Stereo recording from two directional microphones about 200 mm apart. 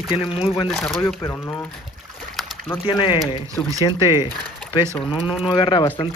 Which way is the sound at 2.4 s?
Centre (ahead or behind).